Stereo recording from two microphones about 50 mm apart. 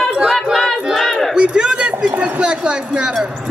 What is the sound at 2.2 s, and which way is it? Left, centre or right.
Speech, centre.